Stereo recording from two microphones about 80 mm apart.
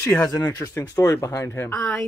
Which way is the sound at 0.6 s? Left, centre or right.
Left.